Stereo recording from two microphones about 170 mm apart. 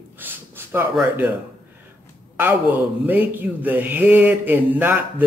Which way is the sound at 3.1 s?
10° right (ahead or behind).